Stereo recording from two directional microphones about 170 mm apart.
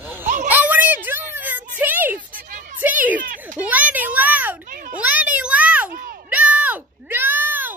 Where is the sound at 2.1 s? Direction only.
50° right (ahead or behind).